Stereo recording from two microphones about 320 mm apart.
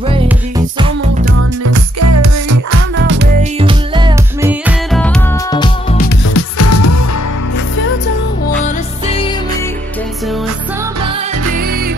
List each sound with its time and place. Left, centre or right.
0.1 s music: centre
1.6 s music: right
3.0 s music: right
3.5 s music: centre
6.3 s music: left
7.5 s music: left